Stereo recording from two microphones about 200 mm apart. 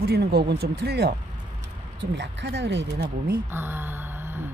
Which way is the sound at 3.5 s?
10° right (ahead or behind).